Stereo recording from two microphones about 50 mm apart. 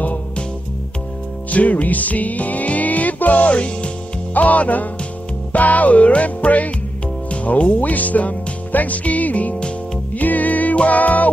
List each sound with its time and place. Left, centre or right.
1.5 s music: left